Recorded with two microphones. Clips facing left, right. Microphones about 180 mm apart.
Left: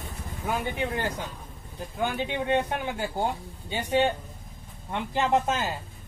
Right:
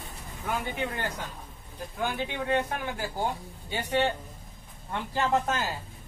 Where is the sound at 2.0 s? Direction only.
20° left (ahead or behind).